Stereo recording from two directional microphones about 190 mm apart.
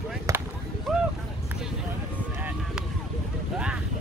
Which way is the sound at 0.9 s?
Centre (ahead or behind).